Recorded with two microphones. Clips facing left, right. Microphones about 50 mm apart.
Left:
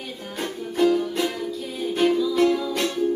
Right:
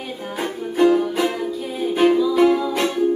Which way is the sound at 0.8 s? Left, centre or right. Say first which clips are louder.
Right 4 dB; centre.